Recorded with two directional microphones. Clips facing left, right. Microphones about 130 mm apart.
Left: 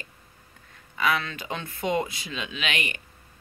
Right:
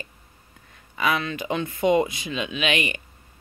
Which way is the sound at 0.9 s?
15° right (ahead or behind).